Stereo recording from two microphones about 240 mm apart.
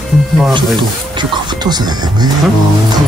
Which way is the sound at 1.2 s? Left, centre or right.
Centre.